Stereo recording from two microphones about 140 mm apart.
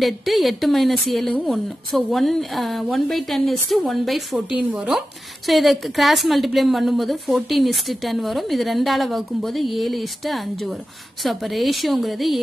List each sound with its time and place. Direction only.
0.0 s a woman's voice: centre (ahead or behind)